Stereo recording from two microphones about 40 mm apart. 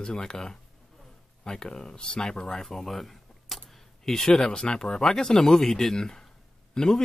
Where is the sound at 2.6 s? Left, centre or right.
Centre.